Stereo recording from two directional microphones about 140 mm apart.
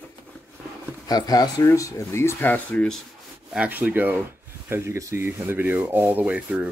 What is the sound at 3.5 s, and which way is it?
Speech, 10° right (ahead or behind).